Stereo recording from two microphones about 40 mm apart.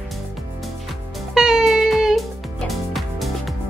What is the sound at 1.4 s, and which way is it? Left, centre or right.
Music, centre.